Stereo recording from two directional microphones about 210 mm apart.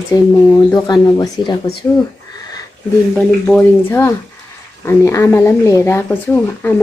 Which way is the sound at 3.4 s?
10° left (ahead or behind).